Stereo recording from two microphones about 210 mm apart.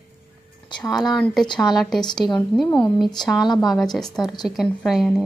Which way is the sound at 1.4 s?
20° left (ahead or behind).